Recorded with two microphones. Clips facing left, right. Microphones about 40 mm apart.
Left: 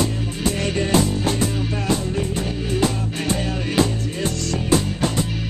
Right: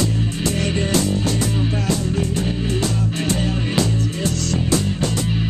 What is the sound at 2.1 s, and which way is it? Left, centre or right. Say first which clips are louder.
Music: right 2 dB; left.